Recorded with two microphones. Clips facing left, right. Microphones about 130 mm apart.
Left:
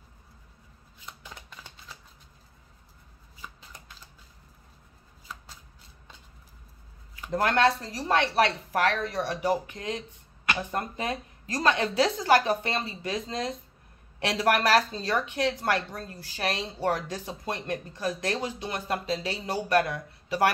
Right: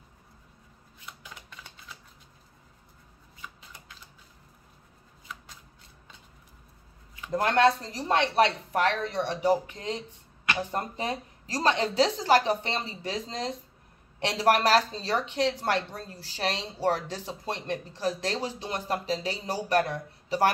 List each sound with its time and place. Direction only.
7.2 s a woman's voice: 25° right (ahead or behind)